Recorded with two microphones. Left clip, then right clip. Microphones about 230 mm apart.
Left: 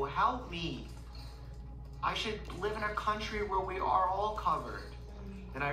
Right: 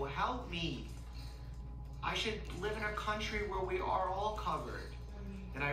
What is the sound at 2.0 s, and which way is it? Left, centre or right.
A woman's voice, centre.